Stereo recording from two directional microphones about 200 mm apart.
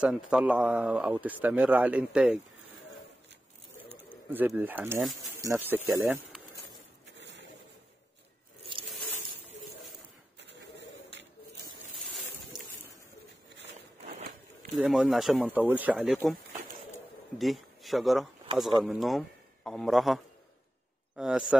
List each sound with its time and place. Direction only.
0.0 s speech: 5° right (ahead or behind)
4.3 s speech: 10° right (ahead or behind)
7.1 s a sound: 60° right (ahead or behind)
12.0 s a sound: centre (ahead or behind)
14.0 s walk: 35° right (ahead or behind)
14.9 s speech: centre (ahead or behind)
17.4 s speech: centre (ahead or behind)
21.2 s speech: 5° right (ahead or behind)